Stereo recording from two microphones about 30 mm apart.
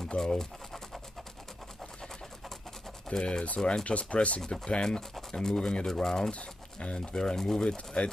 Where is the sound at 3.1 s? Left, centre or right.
Left.